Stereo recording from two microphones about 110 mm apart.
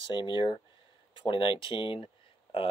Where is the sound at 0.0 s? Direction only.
45° left (ahead or behind).